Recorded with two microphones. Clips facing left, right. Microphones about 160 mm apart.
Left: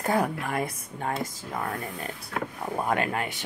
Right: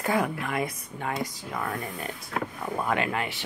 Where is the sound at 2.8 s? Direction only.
45° left (ahead or behind).